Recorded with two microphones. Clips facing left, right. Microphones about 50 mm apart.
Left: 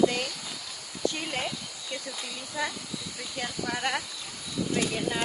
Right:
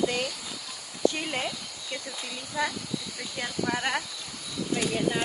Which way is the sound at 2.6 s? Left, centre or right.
Centre.